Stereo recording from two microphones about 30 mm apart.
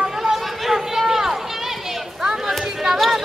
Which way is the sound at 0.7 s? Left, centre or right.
Centre.